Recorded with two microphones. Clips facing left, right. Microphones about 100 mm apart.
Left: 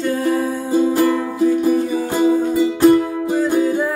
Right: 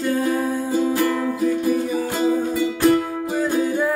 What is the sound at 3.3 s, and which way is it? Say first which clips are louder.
Music: left 4 dB; centre (ahead or behind).